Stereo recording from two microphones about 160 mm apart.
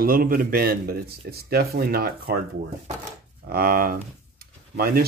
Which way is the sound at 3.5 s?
65° right (ahead or behind).